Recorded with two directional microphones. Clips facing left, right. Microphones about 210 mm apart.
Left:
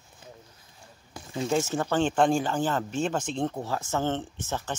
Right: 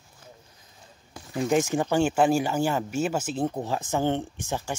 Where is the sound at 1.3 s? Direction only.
15° right (ahead or behind).